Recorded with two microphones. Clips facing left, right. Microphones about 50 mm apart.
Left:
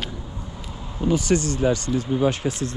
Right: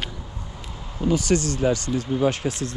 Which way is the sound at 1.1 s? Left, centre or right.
Left.